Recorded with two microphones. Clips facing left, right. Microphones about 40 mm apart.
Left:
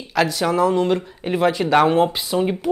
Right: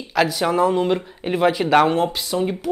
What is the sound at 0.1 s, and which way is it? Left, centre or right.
Speech, centre.